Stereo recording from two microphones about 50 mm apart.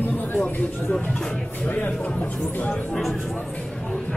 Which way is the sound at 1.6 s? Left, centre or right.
Left.